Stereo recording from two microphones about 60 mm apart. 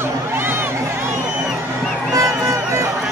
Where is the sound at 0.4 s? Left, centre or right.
Right.